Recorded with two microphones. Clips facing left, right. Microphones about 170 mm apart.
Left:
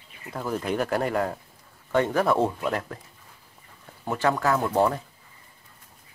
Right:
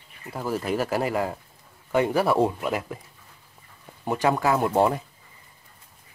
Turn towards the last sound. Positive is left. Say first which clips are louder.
# right 1 dB
turn(degrees=-20)  # may be behind; listen again after turning